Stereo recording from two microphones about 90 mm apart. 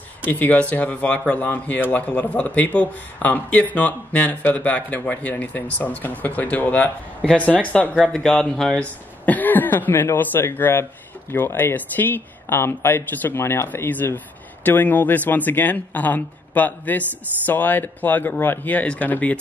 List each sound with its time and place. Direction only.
0.2 s speech: 20° left (ahead or behind)
8.7 s speech: 20° left (ahead or behind)